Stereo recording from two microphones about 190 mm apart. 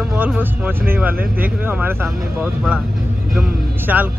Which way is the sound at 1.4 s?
10° right (ahead or behind).